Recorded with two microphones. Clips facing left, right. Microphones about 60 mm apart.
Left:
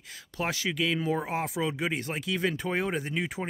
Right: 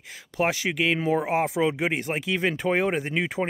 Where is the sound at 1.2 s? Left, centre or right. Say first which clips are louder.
Right 7 dB; centre.